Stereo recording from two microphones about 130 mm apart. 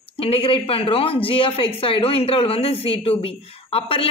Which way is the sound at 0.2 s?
45° left (ahead or behind).